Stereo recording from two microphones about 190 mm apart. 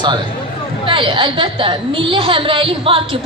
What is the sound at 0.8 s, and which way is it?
A woman's voice, 25° right (ahead or behind).